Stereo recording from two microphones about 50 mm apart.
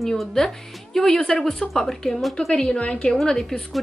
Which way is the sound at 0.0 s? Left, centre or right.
Centre.